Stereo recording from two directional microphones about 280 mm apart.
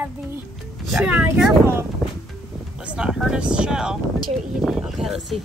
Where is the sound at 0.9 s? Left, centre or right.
Centre.